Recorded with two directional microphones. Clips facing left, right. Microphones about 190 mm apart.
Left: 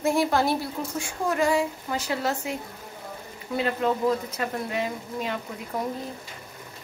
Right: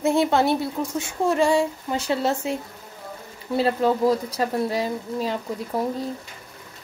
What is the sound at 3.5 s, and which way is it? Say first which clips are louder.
Speech: right 4 dB; 35° right (ahead or behind).